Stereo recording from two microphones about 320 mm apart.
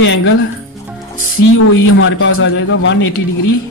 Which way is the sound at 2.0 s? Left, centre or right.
Left.